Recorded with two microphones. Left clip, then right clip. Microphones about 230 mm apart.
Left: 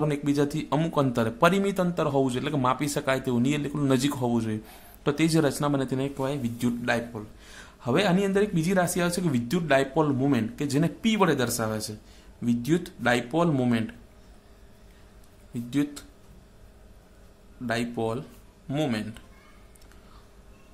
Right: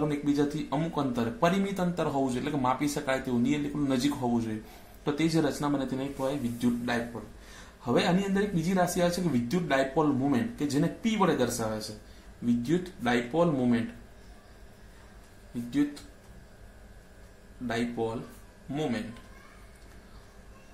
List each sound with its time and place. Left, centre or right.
0.1 s speech: left
15.7 s speech: left
17.6 s speech: left